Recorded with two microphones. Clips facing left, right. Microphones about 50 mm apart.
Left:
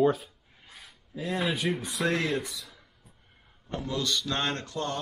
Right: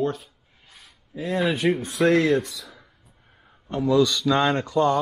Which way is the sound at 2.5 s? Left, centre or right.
Right.